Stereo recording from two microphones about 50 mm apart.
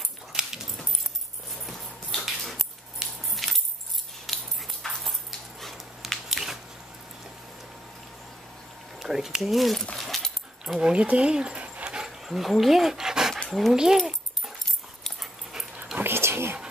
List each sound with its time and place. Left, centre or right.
0.3 s dog: centre
1.7 s a sound: centre
3.0 s a sound: centre
3.4 s music: centre
4.3 s dog: centre
5.6 s a sound: centre
9.0 s speech: centre
9.9 s dog: centre
10.6 s dog: centre
12.3 s speech: centre
13.5 s speech: centre
13.9 s dog: centre
16.0 s whispering: right